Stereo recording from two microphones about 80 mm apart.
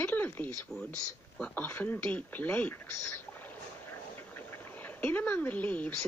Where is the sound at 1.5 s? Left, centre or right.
Left.